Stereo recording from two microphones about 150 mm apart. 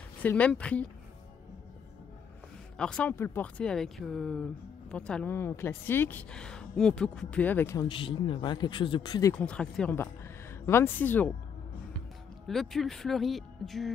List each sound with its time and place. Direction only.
0.2 s a woman's voice: 10° left (ahead or behind)
2.8 s a woman's voice: 5° left (ahead or behind)
7.9 s a man's voice: 35° left (ahead or behind)
9.3 s a woman's voice: 5° left (ahead or behind)
12.4 s speech: centre (ahead or behind)